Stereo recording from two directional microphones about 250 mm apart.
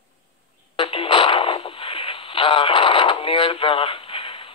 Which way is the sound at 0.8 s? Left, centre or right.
Left.